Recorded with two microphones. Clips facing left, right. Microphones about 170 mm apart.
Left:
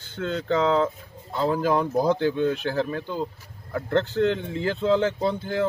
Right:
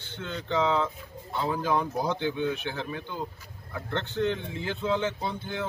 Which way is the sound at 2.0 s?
35° left (ahead or behind).